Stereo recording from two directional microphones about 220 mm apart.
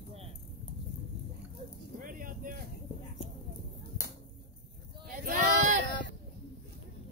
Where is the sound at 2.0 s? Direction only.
40° right (ahead or behind).